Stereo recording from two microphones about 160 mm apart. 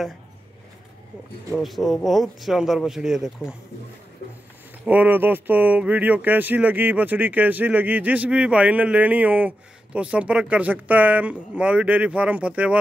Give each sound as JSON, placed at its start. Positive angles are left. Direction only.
{"t": 1.5, "sound": "speech", "side_deg": 0}
{"t": 4.2, "sound": "speech", "side_deg": 65}
{"t": 4.8, "sound": "speech", "side_deg": -10}